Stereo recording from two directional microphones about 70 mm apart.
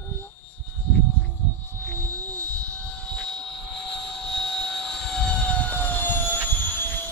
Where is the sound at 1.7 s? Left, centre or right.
Left.